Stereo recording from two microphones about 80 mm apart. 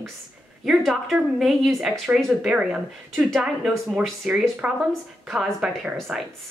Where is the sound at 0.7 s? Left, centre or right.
Centre.